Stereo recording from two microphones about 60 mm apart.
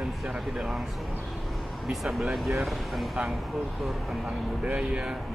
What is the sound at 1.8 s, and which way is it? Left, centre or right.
Speech, centre.